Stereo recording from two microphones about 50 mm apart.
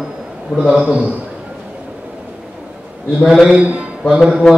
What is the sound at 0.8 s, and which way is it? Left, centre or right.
Speech, right.